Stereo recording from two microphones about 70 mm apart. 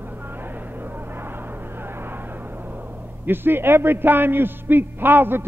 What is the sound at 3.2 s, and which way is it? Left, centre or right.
A man's voice, right.